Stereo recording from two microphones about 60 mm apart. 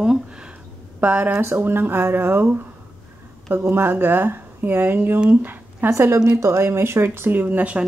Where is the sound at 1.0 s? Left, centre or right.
Right.